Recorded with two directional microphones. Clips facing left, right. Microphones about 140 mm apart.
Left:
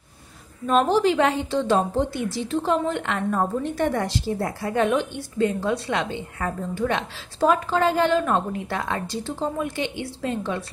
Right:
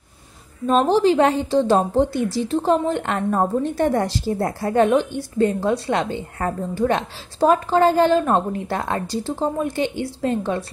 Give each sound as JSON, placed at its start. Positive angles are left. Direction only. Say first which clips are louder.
{"t": 0.7, "sound": "a woman's voice", "louder": "right 3 dB", "side_deg": -30}